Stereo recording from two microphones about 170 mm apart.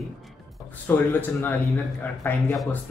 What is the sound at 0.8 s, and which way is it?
Speech, 10° left (ahead or behind).